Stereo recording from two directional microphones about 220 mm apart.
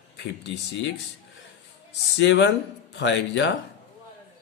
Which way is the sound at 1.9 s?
55° left (ahead or behind).